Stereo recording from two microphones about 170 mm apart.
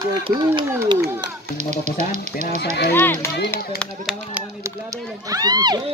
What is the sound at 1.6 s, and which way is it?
Speech, 45° right (ahead or behind).